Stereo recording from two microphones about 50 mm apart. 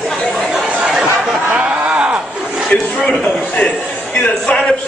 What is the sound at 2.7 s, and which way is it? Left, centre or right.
A man's voice, left.